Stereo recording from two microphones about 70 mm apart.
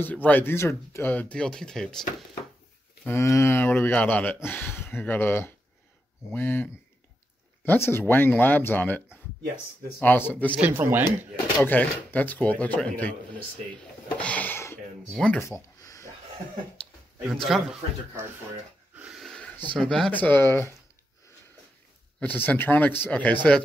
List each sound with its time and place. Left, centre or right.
0.0 s speech: left
1.1 s speech: centre
3.1 s speech: left
3.6 s speech: left
10.7 s speech: right
11.6 s speech: left
14.1 s a sound: left
15.2 s speech: centre
15.8 s a sound: left
16.8 s a sound: centre
17.3 s a man's voice: centre
19.8 s speech: centre
20.1 s speech: left
22.2 s speech: left